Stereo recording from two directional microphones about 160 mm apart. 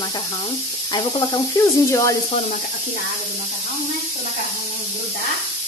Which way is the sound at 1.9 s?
20° left (ahead or behind).